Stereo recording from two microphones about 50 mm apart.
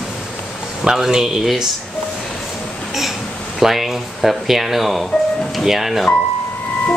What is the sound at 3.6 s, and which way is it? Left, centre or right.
Speech, centre.